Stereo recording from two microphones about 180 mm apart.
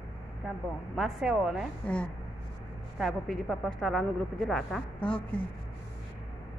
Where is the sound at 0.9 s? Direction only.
Centre (ahead or behind).